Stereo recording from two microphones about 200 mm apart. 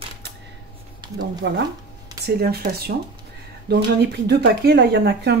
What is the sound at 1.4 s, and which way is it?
A woman's voice, 55° right (ahead or behind).